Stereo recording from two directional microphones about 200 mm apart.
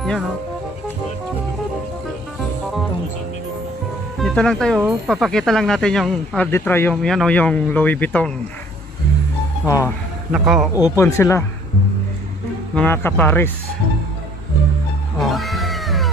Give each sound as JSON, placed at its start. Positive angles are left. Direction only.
{"t": 4.2, "sound": "speech", "side_deg": 5}
{"t": 10.3, "sound": "speech", "side_deg": 0}
{"t": 10.8, "sound": "speech", "side_deg": 15}
{"t": 12.7, "sound": "speech", "side_deg": 10}
{"t": 15.1, "sound": "cat", "side_deg": 0}